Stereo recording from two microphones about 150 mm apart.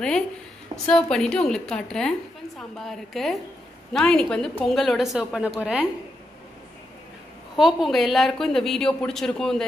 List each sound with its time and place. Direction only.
0.8 s a woman's voice: 5° left (ahead or behind)
7.5 s a woman's voice: centre (ahead or behind)